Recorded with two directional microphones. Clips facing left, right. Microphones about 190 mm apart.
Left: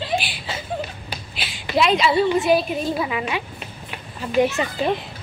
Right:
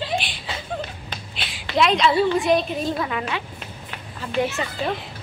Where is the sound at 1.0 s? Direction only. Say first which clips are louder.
Left 1 dB; 5° left (ahead or behind).